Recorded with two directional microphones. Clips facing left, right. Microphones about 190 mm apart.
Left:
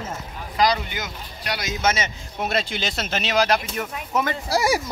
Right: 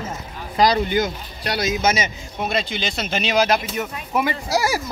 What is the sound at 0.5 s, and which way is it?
Speech, 30° right (ahead or behind).